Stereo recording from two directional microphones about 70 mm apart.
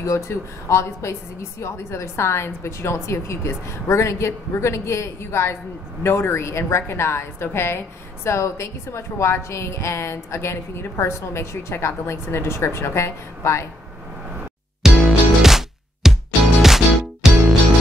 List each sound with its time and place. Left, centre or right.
0.0 s a woman's voice: left
14.8 s music: centre